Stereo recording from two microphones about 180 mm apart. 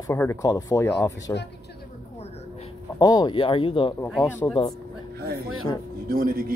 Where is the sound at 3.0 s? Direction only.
20° left (ahead or behind).